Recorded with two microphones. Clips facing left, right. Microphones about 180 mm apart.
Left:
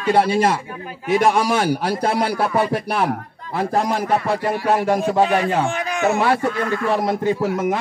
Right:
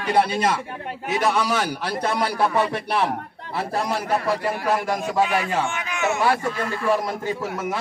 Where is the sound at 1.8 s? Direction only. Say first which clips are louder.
Left 4 dB; 45° left (ahead or behind).